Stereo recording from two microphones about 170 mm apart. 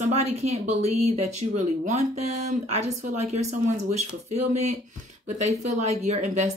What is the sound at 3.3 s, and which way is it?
A woman's voice, 40° right (ahead or behind).